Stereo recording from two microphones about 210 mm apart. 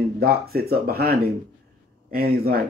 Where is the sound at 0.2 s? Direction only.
50° right (ahead or behind).